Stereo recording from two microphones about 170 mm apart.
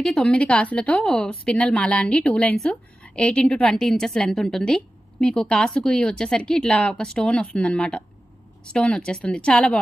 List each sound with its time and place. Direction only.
0.0 s a woman's voice: 5° left (ahead or behind)